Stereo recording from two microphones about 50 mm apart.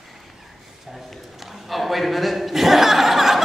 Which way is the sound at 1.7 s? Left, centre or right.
Centre.